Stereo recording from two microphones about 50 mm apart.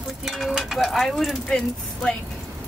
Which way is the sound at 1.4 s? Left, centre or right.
Centre.